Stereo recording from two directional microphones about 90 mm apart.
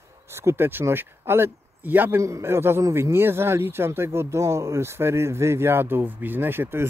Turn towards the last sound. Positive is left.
turn(degrees=-25)  # may be behind; listen again after turning